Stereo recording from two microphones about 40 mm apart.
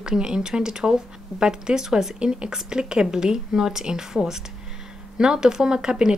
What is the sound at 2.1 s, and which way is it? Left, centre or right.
A woman's voice, right.